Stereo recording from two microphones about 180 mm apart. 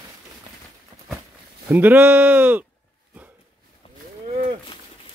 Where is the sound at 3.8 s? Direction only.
30° left (ahead or behind).